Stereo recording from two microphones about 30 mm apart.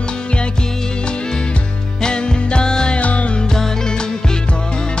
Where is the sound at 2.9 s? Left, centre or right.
Left.